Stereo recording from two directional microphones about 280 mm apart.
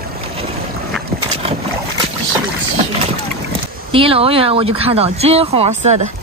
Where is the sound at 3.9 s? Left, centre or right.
Centre.